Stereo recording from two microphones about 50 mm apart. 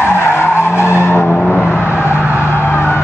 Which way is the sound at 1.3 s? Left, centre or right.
Left.